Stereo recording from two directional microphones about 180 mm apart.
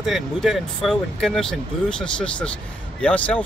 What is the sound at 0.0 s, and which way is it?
Speech, centre (ahead or behind).